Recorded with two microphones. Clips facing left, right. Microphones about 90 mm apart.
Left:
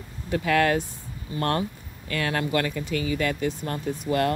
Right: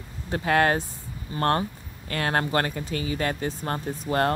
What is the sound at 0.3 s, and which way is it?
Speech, 35° right (ahead or behind).